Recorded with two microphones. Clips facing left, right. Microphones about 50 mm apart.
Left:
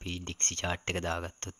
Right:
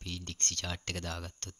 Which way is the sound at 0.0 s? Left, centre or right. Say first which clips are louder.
Left 2 dB; left.